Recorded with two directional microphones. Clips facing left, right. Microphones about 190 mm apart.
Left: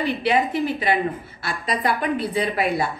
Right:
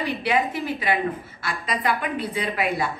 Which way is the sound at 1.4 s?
35° left (ahead or behind).